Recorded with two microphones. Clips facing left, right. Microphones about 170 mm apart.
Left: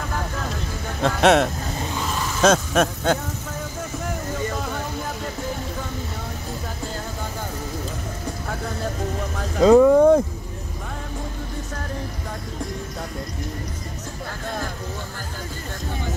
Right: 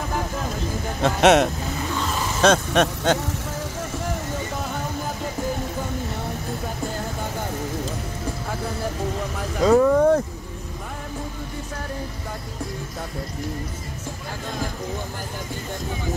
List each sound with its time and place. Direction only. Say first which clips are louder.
1.0 s speech: right 1 dB; centre (ahead or behind)
9.6 s speech: left 4 dB; 20° left (ahead or behind)